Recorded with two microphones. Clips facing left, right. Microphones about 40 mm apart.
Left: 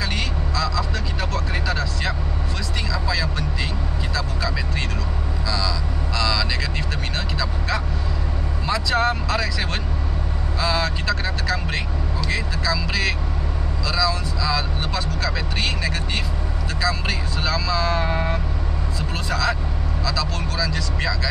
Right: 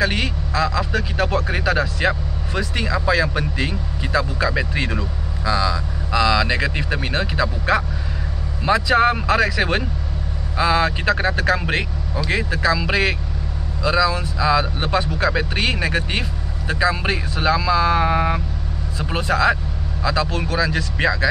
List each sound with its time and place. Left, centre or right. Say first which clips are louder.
0.0 s speech: right 5 dB; right